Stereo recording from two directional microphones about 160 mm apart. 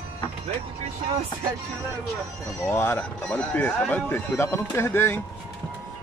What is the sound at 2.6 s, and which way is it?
Speech, 15° left (ahead or behind).